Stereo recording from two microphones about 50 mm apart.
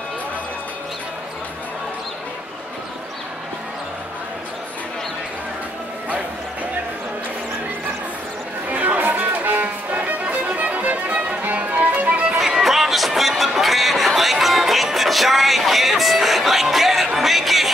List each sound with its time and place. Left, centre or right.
8.6 s music: right
12.4 s music: centre